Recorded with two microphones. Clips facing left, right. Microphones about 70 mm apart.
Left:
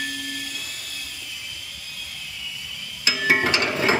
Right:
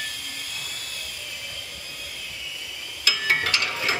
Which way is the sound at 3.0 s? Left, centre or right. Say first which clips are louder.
Left 4 dB; centre.